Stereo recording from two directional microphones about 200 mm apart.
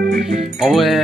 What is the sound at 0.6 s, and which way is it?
Speech, centre (ahead or behind).